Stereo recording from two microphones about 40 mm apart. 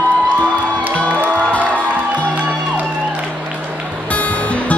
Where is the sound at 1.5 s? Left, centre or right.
Left.